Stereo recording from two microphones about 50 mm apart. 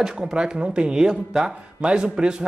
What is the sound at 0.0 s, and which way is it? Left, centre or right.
A man's voice, centre.